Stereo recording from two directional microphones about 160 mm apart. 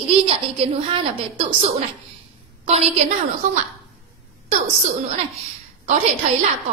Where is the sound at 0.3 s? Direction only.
35° right (ahead or behind).